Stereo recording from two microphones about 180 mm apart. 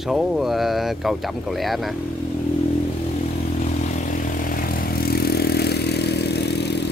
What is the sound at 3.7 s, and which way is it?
Vehicle, 50° left (ahead or behind).